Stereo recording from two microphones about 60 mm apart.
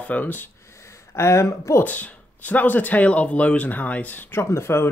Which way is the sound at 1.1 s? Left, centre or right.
Left.